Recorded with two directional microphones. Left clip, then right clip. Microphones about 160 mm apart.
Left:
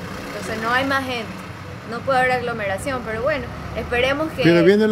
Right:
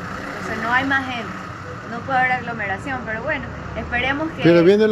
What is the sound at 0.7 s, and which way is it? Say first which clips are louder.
Speech: right 1 dB; 45° left (ahead or behind).